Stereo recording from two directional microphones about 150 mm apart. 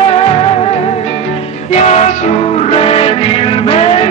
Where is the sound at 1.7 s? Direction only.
50° left (ahead or behind).